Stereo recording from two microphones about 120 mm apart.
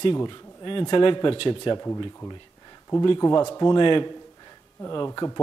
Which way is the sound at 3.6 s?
40° left (ahead or behind).